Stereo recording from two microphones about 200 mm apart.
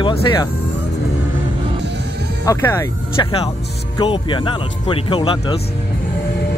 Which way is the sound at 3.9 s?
25° left (ahead or behind).